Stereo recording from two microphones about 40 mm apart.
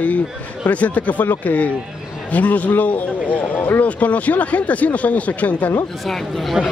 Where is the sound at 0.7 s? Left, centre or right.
Left.